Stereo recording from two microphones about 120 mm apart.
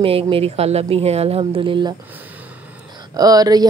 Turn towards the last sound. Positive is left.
turn(degrees=-30)  # may be behind; listen again after turning